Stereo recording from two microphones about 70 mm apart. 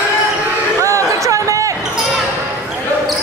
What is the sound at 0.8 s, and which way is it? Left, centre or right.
Basketball bounce, right.